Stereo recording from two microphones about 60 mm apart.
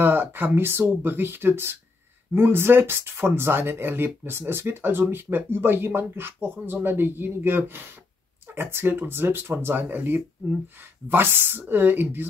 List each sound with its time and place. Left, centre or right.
0.0 s speech: right